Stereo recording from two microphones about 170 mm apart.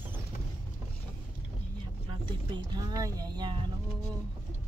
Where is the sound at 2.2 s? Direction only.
25° right (ahead or behind).